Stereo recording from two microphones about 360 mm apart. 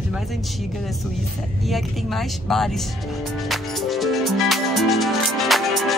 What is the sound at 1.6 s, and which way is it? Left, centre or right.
Speech, centre.